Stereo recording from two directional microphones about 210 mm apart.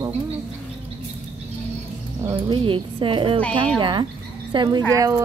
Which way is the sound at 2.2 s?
20° right (ahead or behind).